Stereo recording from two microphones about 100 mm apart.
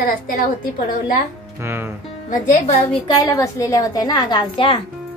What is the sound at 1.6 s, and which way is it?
Speech, 25° right (ahead or behind).